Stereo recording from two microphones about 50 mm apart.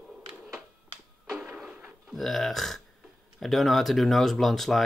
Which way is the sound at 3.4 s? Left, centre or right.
Centre.